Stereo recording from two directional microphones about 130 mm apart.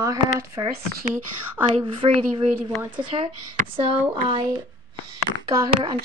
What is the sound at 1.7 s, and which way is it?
Speech, 50° right (ahead or behind).